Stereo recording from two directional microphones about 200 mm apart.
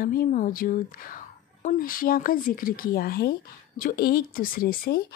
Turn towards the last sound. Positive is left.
turn(degrees=45)  # may be behind; listen again after turning